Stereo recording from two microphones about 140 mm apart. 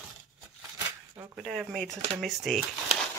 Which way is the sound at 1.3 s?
5° right (ahead or behind).